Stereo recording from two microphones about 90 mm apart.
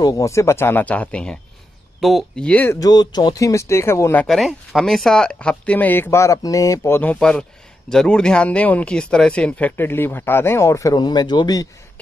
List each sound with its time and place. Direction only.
0.0 s speech: 40° left (ahead or behind); by 1.4 s 10° left (ahead or behind)
2.0 s speech: centre (ahead or behind)
2.4 s speech: 15° left (ahead or behind)
2.8 s speech: 50° left (ahead or behind); by 4.2 s 30° left (ahead or behind)
4.3 s speech: centre (ahead or behind); by 7.2 s 20° left (ahead or behind)
7.2 s speech: 10° left (ahead or behind); by 11.0 s 35° left (ahead or behind)
11.0 s speech: 55° left (ahead or behind)